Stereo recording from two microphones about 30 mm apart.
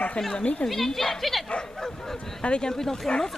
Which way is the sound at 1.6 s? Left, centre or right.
Left.